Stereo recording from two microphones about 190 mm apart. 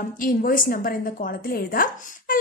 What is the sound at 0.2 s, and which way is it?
A woman's voice, 45° left (ahead or behind).